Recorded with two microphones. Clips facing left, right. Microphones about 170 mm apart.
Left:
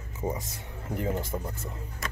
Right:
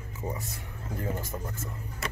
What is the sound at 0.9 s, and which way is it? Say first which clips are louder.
Speech: left 4 dB; 20° left (ahead or behind).